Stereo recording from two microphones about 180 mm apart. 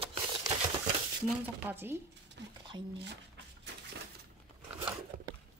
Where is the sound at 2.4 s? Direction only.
80° right.